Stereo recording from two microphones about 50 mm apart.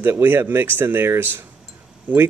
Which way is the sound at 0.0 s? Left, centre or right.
Right.